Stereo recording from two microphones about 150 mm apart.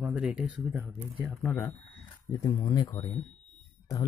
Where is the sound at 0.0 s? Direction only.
5° right (ahead or behind).